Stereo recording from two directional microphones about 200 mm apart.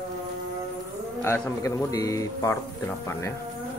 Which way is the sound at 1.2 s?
10° left (ahead or behind).